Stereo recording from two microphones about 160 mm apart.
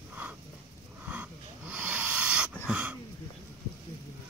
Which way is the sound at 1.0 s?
10° right (ahead or behind).